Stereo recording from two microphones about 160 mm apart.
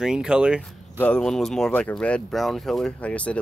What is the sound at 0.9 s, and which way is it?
Speech, 5° left (ahead or behind).